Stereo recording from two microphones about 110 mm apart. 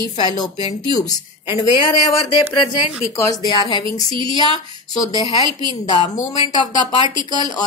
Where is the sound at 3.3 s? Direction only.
40° left (ahead or behind).